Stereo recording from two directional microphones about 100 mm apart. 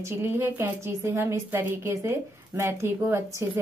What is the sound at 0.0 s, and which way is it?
A woman's voice, 25° right (ahead or behind).